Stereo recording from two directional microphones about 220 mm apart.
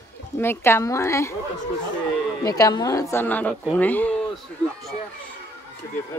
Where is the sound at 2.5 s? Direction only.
15° left (ahead or behind).